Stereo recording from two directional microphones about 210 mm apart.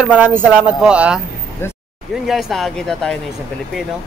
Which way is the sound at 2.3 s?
Centre (ahead or behind).